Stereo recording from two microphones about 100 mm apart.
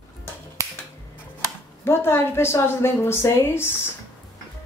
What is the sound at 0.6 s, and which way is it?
Finger snapping, 35° right (ahead or behind).